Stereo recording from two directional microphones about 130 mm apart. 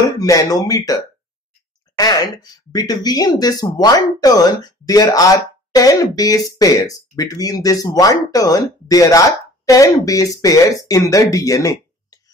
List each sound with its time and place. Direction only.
0.2 s speech: 25° left (ahead or behind)